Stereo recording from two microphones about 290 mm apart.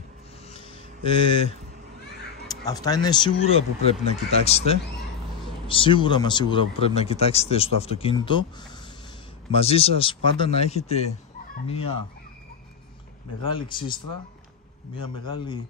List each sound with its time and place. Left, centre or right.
0.5 s a sound: centre
2.4 s speech: centre
13.5 s speech: centre
15.2 s speech: centre